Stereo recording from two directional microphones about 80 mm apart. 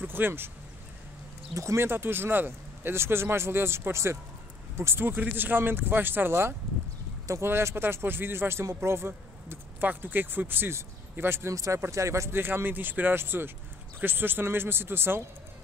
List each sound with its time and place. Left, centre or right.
0.0 s speech: right
1.5 s speech: right